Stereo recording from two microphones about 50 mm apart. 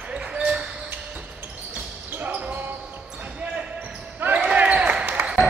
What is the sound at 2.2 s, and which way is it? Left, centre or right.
Basketball bounce, right.